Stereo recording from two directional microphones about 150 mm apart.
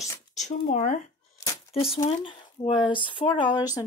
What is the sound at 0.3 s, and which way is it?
Speech, 55° left (ahead or behind).